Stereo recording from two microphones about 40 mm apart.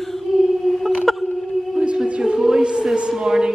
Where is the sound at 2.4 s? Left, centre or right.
Centre.